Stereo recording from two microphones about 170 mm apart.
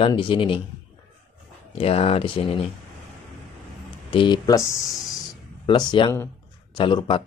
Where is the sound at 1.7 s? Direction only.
35° left (ahead or behind).